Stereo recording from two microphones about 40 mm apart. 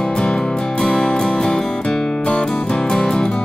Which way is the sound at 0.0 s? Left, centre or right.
Centre.